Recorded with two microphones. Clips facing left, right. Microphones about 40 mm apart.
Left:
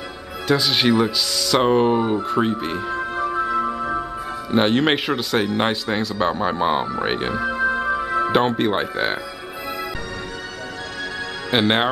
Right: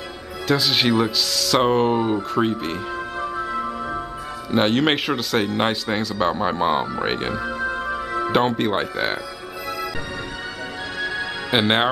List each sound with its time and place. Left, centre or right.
0.5 s speech: centre
3.2 s music: centre
3.4 s music: centre
4.5 s speech: centre
11.5 s speech: centre